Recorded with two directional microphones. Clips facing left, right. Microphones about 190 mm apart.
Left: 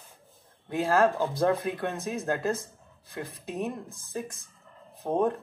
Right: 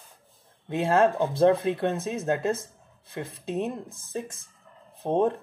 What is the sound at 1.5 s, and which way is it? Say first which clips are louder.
Speech: right 5 dB; 30° right (ahead or behind).